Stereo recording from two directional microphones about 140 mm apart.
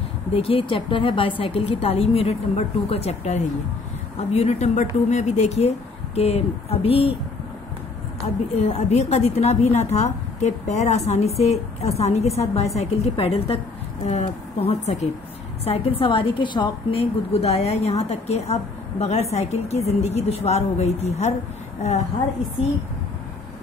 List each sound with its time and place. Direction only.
0.3 s a woman's voice: 40° left (ahead or behind)
8.2 s a woman's voice: 55° left (ahead or behind)